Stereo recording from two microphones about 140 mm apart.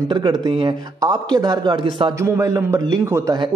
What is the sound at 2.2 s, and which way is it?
A man's voice, 20° right (ahead or behind).